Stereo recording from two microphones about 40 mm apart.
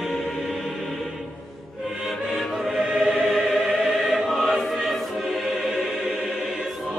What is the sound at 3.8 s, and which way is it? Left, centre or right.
Choir, centre.